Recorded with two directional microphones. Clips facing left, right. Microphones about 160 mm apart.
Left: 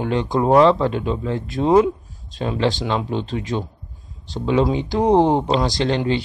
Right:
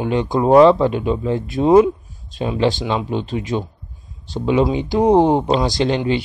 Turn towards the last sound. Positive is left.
turn(degrees=-15)  # may be behind; listen again after turning